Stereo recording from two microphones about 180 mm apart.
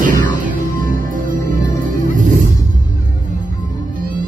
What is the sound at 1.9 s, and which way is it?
Music, 50° right (ahead or behind).